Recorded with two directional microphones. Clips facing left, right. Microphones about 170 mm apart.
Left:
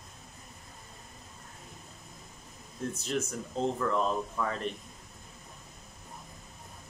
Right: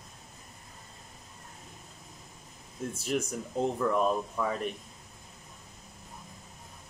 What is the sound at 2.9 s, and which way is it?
Speech, 10° right (ahead or behind).